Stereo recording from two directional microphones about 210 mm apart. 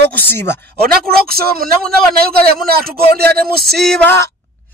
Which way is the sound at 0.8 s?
45° right (ahead or behind).